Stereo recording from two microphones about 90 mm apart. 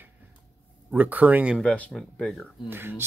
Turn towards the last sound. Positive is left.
turn(degrees=-25)  # may be behind; listen again after turning